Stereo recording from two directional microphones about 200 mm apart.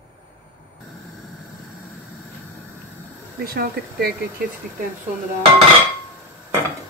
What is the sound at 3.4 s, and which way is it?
Speech, 50° right (ahead or behind).